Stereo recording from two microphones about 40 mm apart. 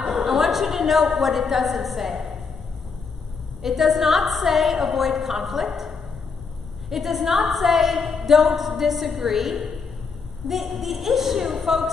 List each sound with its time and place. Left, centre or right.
0.0 s a woman's voice: centre
3.6 s a woman's voice: centre